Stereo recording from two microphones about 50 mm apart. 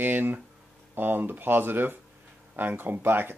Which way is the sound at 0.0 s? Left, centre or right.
Right.